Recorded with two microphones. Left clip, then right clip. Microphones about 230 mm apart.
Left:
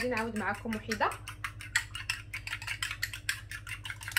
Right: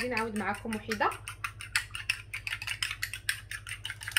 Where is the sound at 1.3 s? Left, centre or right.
Centre.